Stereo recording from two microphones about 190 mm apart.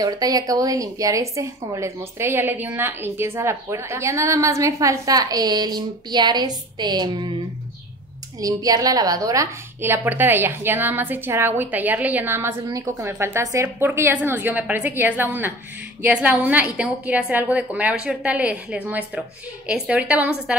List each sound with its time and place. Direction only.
0.0 s a woman's voice: 20° right (ahead or behind)
8.4 s a woman's voice: 20° right (ahead or behind)